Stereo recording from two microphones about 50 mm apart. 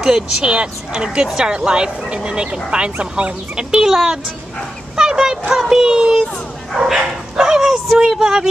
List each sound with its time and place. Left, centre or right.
0.0 s speech: centre
4.9 s a sound: centre
5.5 s speech: centre